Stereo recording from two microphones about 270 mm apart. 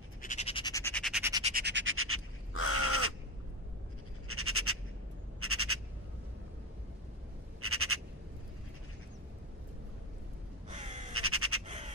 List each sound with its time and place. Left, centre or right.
0.2 s squawk: left; by 1.2 s centre
1.4 s scratch: right
2.5 s crow: left
4.3 s a sound: right
5.4 s frog: right
7.6 s frog: right
10.7 s crow: right
11.1 s crow: right
11.6 s scratch: right